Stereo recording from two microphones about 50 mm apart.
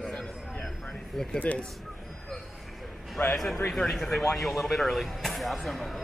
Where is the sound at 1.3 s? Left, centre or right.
Left.